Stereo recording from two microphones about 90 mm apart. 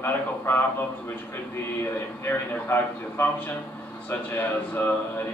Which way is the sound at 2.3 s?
25° left (ahead or behind).